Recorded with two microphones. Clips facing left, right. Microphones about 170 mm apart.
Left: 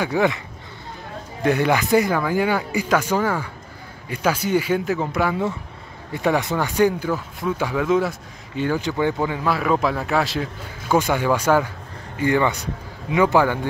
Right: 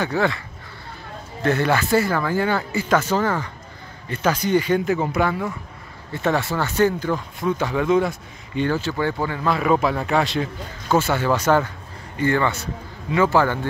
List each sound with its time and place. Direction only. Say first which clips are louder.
0.0 s speech: left 2 dB; 15° left (ahead or behind)
1.4 s speech: left 1 dB; 15° left (ahead or behind)
6.1 s speech: left 1 dB; 15° left (ahead or behind)
11.0 s speech: left 1 dB; 15° left (ahead or behind)